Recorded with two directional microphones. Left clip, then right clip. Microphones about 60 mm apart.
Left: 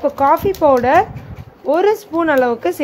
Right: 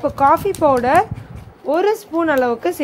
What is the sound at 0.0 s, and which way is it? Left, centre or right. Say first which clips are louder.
Speech: left 1 dB; right.